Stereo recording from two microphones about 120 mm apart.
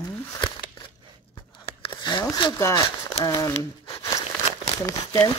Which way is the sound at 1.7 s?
45° left (ahead or behind).